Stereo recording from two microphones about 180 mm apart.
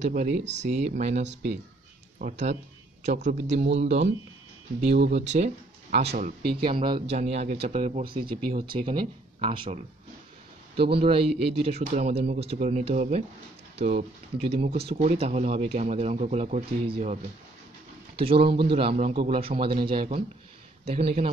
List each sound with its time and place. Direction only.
0.0 s speech: 40° right (ahead or behind)
5.1 s speech: 40° right (ahead or behind)
6.6 s speech: 25° right (ahead or behind)
10.8 s speech: 30° right (ahead or behind)